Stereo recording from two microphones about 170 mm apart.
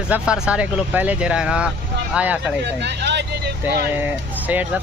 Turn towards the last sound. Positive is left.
turn(degrees=-10)  # may be behind; listen again after turning